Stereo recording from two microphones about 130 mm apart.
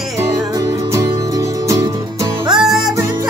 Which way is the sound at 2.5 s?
5° right (ahead or behind).